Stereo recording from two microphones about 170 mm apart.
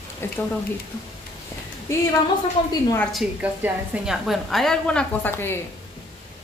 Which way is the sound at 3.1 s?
Centre (ahead or behind).